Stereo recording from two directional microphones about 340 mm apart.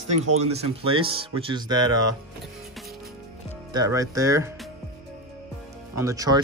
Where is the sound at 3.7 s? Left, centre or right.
Centre.